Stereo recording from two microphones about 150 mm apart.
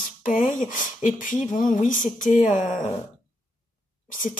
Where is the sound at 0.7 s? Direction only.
60° left (ahead or behind).